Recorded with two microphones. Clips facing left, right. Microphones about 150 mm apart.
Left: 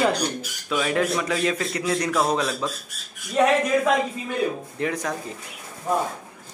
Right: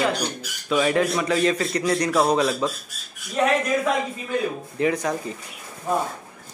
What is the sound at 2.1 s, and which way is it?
Speech, 5° right (ahead or behind).